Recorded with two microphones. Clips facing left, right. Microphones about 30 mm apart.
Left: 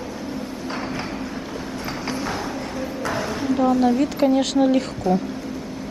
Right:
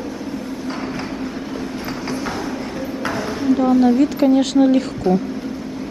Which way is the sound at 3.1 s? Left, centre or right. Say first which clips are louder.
Right 5 dB; centre.